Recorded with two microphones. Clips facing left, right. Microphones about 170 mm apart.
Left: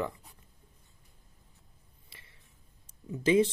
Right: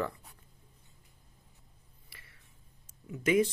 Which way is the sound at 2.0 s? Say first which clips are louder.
Even; 25° left (ahead or behind).